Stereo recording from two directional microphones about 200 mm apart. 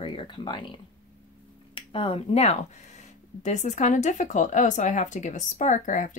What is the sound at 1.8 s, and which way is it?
Speech, 25° left (ahead or behind).